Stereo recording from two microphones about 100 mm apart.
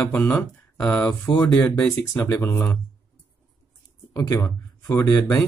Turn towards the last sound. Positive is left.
turn(degrees=30)  # may be behind; listen again after turning